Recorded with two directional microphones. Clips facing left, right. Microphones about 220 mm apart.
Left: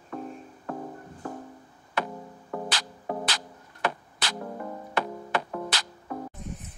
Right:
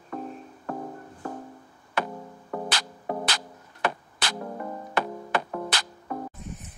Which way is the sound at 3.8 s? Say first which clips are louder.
Right 1 dB; 55° right (ahead or behind).